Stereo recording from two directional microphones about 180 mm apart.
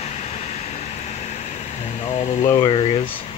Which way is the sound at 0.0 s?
40° left (ahead or behind).